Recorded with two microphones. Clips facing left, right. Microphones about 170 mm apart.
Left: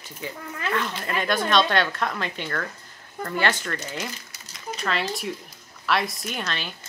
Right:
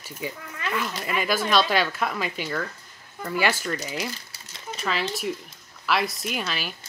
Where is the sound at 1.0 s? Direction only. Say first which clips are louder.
Right 1 dB; 5° right (ahead or behind).